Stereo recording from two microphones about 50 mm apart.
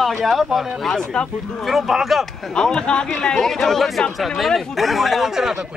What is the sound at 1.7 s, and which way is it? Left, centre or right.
Speech, centre.